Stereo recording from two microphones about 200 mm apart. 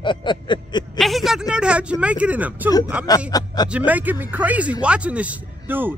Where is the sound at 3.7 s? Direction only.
10° right (ahead or behind).